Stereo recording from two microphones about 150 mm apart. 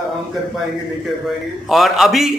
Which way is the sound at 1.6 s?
Centre (ahead or behind).